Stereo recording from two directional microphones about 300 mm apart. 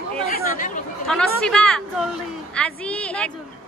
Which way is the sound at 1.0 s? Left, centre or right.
Centre.